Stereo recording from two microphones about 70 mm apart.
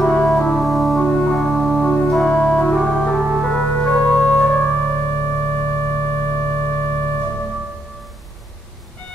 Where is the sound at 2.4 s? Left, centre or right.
Centre.